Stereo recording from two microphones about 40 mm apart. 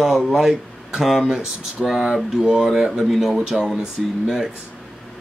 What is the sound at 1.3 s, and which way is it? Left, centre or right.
Speech, centre.